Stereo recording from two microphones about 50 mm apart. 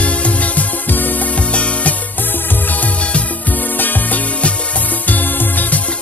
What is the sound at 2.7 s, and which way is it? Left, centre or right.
Music, left.